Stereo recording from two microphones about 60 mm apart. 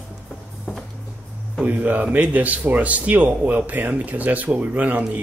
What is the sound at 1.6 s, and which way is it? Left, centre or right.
Speech, right.